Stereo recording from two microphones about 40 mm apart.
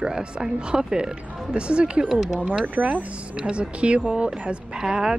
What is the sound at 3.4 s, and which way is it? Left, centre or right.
Speech, right.